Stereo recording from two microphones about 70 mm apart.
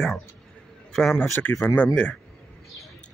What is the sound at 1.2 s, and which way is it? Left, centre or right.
Speech, left.